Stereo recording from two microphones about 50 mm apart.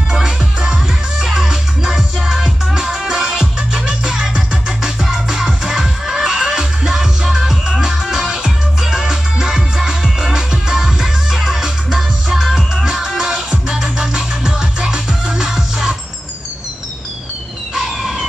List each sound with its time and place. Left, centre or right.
0.1 s music: centre
17.7 s emergency vehicle: centre